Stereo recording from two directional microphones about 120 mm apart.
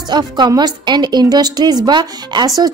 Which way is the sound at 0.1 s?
35° right (ahead or behind).